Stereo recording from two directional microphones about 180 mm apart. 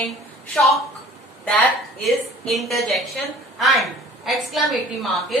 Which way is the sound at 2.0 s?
Centre (ahead or behind).